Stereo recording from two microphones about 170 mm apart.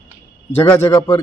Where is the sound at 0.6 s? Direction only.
15° left (ahead or behind).